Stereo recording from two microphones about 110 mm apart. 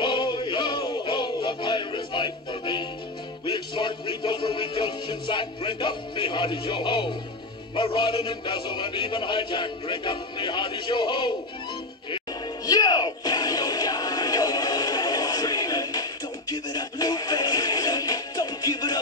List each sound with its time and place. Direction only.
0.0 s music: 45° left (ahead or behind)
7.7 s a man's voice: 50° left (ahead or behind)
12.6 s music: 35° left (ahead or behind)